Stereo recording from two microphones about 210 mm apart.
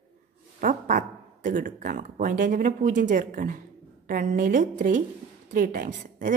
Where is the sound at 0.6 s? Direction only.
40° right (ahead or behind).